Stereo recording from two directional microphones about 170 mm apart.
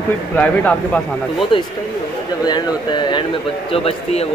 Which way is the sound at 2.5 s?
25° left (ahead or behind).